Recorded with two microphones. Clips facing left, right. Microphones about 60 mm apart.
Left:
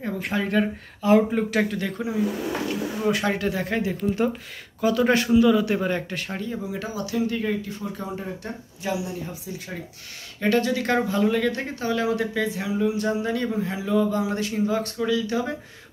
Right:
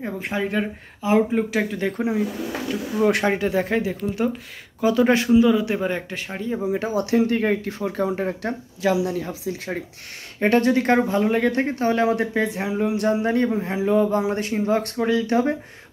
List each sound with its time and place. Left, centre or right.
0.0 s speech: centre
2.0 s a sound: right
3.3 s speech: centre
3.7 s speech: centre
6.6 s speech: right
7.0 s speech: right
10.4 s speech: right
12.6 s a sound: right
13.3 s speech: right